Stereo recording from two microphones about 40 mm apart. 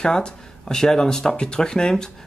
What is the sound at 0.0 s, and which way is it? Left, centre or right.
Speech, centre.